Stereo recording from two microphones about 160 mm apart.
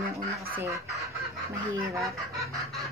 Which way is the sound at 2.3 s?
20° right (ahead or behind).